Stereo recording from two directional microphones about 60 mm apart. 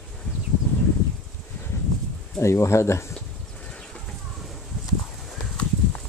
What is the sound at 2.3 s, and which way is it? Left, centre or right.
Speech, left.